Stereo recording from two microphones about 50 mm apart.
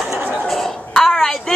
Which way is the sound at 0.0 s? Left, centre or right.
Centre.